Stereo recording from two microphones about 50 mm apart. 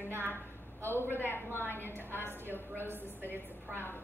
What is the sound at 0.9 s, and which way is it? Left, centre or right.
Speech, right.